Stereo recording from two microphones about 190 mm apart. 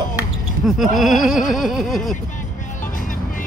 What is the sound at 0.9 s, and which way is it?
Music, centre (ahead or behind).